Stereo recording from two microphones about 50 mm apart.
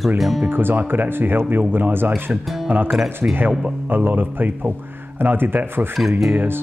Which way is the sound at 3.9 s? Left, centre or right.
Right.